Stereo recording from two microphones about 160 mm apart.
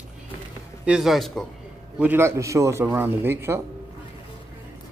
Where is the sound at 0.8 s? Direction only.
5° right (ahead or behind).